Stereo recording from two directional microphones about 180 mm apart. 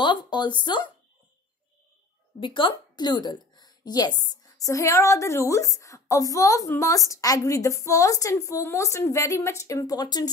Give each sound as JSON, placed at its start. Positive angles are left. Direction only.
{"t": 0.0, "sound": "speech", "side_deg": 25}
{"t": 2.4, "sound": "a woman's voice", "side_deg": 25}